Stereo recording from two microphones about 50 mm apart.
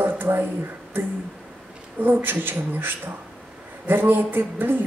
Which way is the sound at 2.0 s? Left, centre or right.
Right.